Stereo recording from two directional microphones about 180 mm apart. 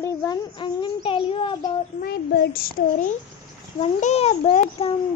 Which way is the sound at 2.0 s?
65° left (ahead or behind).